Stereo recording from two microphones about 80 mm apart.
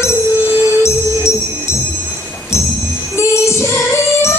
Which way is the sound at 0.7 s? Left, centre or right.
Left.